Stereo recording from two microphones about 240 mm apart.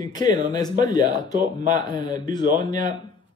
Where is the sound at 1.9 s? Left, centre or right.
Centre.